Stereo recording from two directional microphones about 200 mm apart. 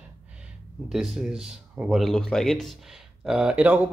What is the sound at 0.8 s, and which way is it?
Speech, centre (ahead or behind).